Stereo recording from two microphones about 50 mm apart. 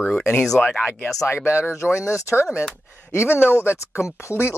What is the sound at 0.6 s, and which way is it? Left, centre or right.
Speech, centre.